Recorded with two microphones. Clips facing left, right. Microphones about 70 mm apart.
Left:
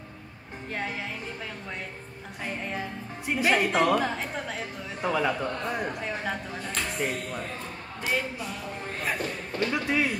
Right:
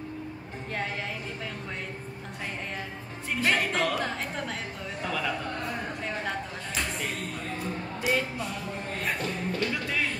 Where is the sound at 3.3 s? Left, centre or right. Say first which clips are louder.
Left 3 dB; centre.